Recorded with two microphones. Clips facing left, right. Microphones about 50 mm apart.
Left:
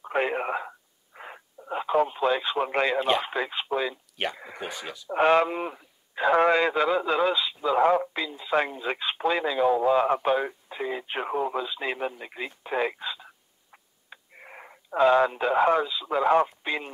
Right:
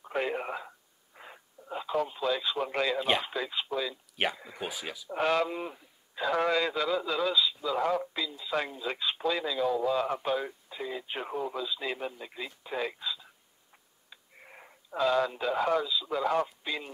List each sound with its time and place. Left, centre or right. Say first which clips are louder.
0.0 s radio: left 5 dB; left
3.3 s speech: left 5 dB; left
4.6 s speech: left 2 dB; centre
5.1 s a man's voice: left 7 dB; left